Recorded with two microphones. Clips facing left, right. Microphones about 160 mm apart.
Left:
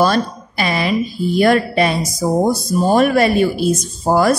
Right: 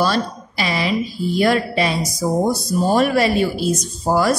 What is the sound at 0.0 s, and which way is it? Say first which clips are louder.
A woman's voice: left 4 dB; 50° left (ahead or behind).